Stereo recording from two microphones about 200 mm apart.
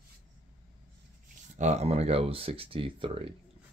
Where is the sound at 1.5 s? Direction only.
35° right (ahead or behind).